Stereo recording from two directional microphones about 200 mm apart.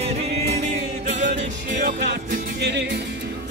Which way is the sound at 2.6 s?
60° right (ahead or behind).